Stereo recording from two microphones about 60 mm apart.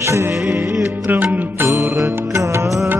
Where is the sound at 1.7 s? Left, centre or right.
Right.